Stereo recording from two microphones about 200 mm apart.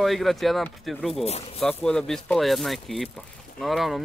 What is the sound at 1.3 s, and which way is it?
Speech, 30° left (ahead or behind).